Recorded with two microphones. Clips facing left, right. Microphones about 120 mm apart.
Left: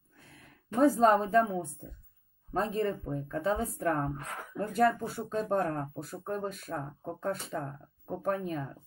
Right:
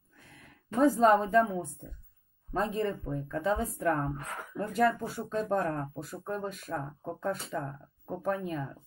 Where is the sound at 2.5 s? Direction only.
40° left (ahead or behind).